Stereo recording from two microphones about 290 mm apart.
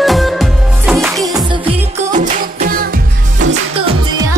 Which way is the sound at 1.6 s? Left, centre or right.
Right.